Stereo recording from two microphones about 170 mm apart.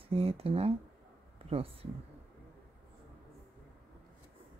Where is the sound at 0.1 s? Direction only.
35° right (ahead or behind).